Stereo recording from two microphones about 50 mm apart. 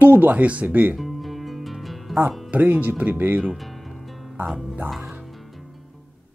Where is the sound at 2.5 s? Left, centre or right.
Right.